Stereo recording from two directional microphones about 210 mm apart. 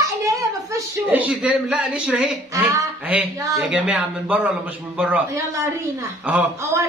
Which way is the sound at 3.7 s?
5° right (ahead or behind).